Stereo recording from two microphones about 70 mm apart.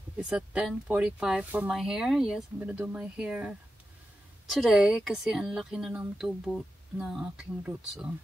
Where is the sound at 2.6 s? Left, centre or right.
Right.